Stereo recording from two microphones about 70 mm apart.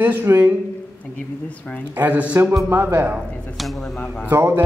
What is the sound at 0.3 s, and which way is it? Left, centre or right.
Speech, right.